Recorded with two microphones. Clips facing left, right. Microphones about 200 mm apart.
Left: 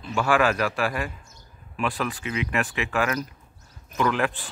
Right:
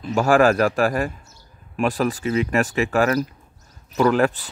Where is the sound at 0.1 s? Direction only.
40° right (ahead or behind).